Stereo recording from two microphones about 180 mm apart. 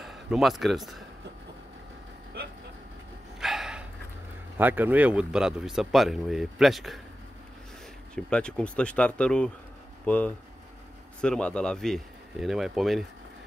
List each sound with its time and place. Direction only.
0.0 s speech: centre (ahead or behind)
2.4 s vehicle: 60° right (ahead or behind)
3.3 s dog: centre (ahead or behind)
4.6 s speech: 10° right (ahead or behind)
8.1 s speech: 5° left (ahead or behind)